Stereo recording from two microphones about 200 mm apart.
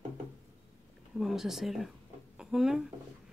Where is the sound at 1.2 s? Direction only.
Centre (ahead or behind).